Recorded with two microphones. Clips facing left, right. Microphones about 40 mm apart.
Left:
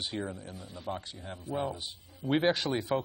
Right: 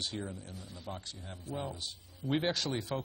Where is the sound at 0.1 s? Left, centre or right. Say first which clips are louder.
Left 4 dB; centre.